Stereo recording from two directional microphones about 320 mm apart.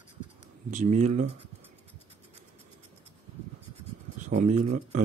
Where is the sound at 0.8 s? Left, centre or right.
Right.